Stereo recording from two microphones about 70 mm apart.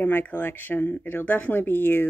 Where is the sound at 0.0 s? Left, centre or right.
Left.